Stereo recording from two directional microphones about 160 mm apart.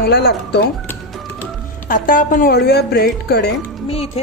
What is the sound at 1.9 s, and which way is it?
Speech, 55° left (ahead or behind).